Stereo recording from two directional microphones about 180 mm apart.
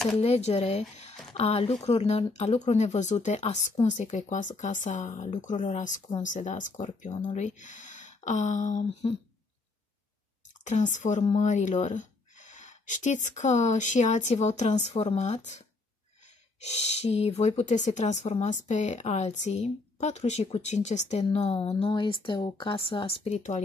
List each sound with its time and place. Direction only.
0.2 s speech: 35° left (ahead or behind)
10.6 s speech: 40° left (ahead or behind)
16.6 s speech: 35° left (ahead or behind)